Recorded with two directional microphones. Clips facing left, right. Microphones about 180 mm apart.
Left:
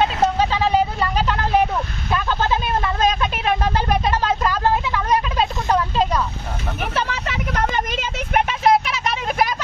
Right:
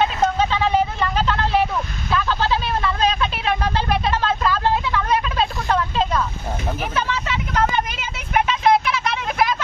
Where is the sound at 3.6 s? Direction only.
45° left (ahead or behind).